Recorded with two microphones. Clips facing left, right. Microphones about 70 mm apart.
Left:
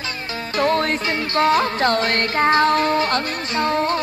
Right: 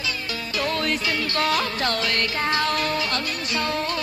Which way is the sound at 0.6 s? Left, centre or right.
Left.